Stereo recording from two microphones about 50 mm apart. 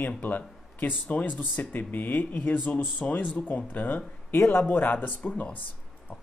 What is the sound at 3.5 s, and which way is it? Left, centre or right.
Speech, left.